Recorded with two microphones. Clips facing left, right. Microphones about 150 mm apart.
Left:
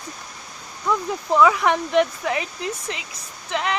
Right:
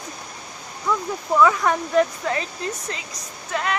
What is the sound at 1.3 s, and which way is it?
Speech, 15° left (ahead or behind).